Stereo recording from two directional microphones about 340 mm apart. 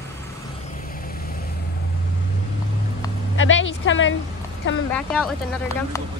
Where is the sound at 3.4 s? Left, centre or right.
Left.